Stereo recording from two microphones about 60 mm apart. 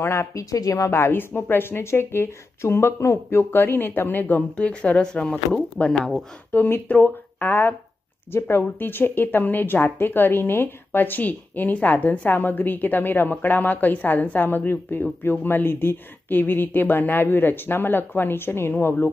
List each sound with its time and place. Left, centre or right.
0.0 s speech: left
0.3 s a woman's voice: left
0.8 s speech: left
4.6 s speech: left
5.0 s speech: centre
6.5 s speech: left